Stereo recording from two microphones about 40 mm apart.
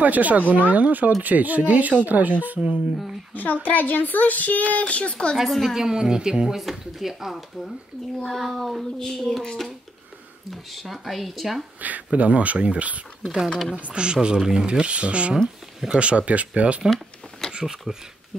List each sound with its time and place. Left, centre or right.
0.0 s speech: right
3.3 s speech: left
5.5 s speech: centre
5.8 s a woman's voice: centre
6.5 s speech: centre
8.2 s a woman's voice: centre
10.5 s speech: centre
11.8 s speech: right
13.2 s speech: centre
13.7 s speech: right
14.0 s a woman's voice: right
17.5 s a sound: centre